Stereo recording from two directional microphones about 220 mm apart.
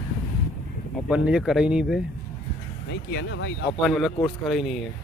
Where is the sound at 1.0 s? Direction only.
5° right (ahead or behind).